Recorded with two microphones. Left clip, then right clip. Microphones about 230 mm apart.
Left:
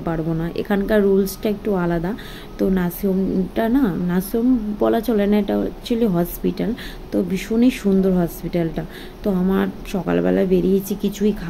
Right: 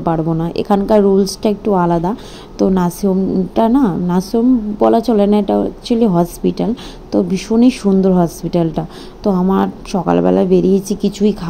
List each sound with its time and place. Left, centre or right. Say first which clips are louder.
0.0 s a woman's voice: right 7 dB; centre